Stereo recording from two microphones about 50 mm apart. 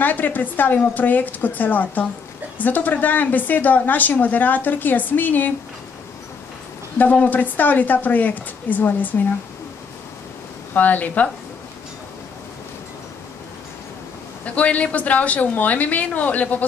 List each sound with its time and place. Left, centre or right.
0.0 s a woman's voice: left
7.0 s a woman's voice: left
10.7 s a woman's voice: left
14.4 s a woman's voice: left